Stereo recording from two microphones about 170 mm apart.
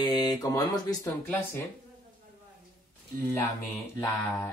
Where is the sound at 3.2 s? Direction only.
10° left (ahead or behind).